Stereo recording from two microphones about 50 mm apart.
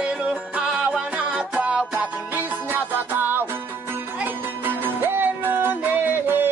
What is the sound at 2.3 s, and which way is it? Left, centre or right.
Music, right.